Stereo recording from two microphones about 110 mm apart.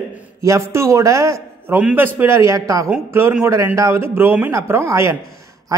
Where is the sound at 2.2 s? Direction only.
25° right (ahead or behind).